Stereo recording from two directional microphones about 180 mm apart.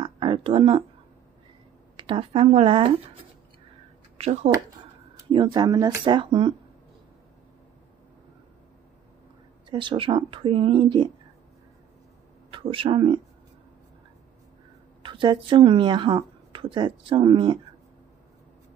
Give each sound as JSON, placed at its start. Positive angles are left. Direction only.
{"t": 0.0, "sound": "a sound", "side_deg": -30}
{"t": 2.0, "sound": "a woman's voice", "side_deg": -30}
{"t": 4.2, "sound": "speech", "side_deg": -35}
{"t": 5.1, "sound": "a woman's voice", "side_deg": -25}
{"t": 9.7, "sound": "a woman's voice", "side_deg": -30}
{"t": 12.4, "sound": "speech", "side_deg": -30}
{"t": 15.0, "sound": "a woman's voice", "side_deg": -25}